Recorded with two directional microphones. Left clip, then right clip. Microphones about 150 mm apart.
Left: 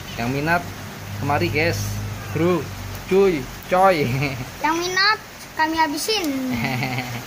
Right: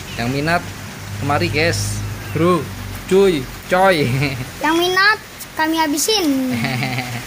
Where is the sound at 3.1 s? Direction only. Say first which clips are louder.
Right 3 dB; centre (ahead or behind).